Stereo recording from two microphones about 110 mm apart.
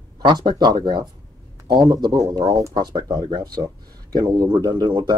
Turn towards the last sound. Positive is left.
turn(degrees=-50)  # may be behind; listen again after turning